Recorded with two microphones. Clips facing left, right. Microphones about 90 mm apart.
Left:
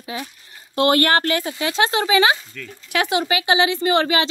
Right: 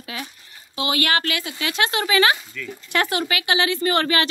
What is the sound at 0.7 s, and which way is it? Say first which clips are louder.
Speech: left 6 dB; 50° left (ahead or behind).